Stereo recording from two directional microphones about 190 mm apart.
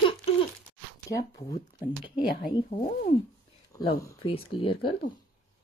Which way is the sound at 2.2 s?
55° left (ahead or behind).